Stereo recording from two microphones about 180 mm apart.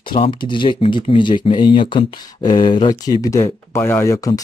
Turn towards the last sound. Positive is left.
turn(degrees=20)  # may be behind; listen again after turning